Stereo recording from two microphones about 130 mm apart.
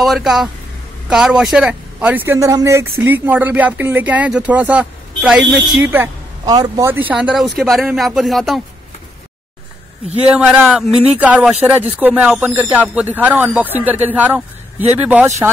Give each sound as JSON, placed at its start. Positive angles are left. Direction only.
{"t": 0.0, "sound": "a man's voice", "side_deg": 0}
{"t": 6.4, "sound": "a man's voice", "side_deg": -30}
{"t": 6.9, "sound": "speech", "side_deg": -15}
{"t": 10.3, "sound": "speech", "side_deg": -10}